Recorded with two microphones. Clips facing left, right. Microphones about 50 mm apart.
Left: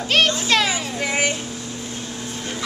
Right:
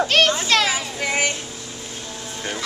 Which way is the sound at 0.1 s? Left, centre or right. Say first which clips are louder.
Even; centre.